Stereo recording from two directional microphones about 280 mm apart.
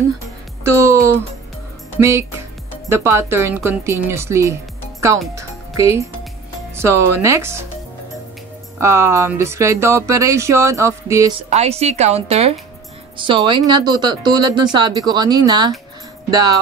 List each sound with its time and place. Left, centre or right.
0.7 s speech: centre
5.3 s music: centre
6.7 s speech: centre
8.7 s speech: centre
11.5 s speech: right